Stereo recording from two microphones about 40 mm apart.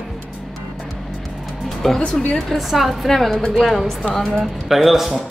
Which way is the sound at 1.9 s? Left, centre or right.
Centre.